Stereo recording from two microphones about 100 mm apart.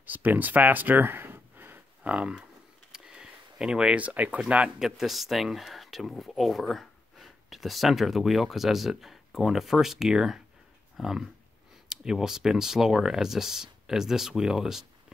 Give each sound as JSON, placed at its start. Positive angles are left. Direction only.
{"t": 0.0, "sound": "speech", "side_deg": -15}
{"t": 2.9, "sound": "a sound", "side_deg": -10}
{"t": 4.5, "sound": "speech", "side_deg": -5}